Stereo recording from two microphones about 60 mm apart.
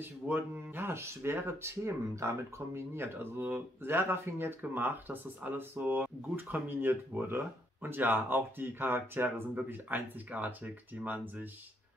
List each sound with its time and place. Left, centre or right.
0.0 s speech: right